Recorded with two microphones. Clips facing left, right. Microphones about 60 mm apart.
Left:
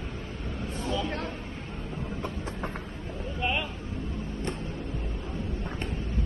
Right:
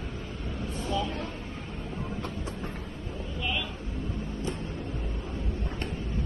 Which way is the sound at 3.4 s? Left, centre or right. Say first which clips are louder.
Left 3 dB; left.